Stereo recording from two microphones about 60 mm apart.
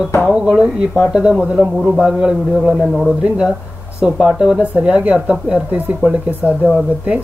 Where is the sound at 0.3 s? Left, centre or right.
Centre.